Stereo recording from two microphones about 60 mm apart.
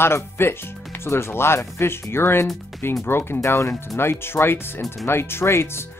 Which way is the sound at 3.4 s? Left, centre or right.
Left.